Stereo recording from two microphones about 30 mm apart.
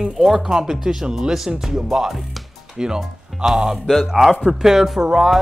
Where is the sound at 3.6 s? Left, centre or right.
Centre.